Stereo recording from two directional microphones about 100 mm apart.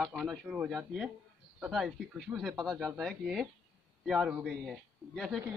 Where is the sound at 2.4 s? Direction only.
5° left (ahead or behind).